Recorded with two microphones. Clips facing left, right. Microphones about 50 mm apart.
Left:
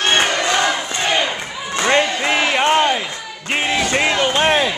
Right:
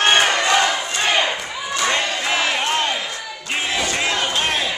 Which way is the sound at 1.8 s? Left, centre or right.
Left.